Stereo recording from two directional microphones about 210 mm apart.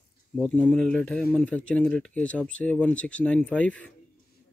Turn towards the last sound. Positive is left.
turn(degrees=5)  # may be behind; listen again after turning